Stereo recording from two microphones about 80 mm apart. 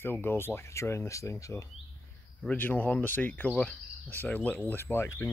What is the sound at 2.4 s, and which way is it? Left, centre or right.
Cricket, left.